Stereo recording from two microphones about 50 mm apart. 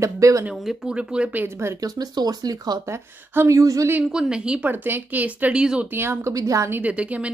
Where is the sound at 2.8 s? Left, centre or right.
Right.